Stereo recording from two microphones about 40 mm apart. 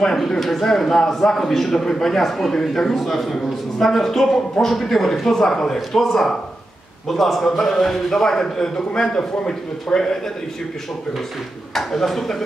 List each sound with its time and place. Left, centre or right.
0.1 s a man's voice: centre
11.7 s a man's voice: centre